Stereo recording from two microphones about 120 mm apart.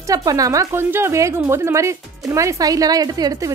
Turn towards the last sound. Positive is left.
turn(degrees=-30)  # may be behind; listen again after turning